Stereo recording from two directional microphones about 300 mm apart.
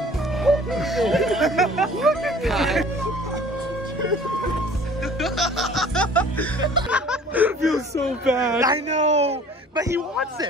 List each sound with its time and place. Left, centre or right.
0.4 s music: centre
5.2 s music: centre
6.9 s snicker: centre
8.3 s a man's voice: centre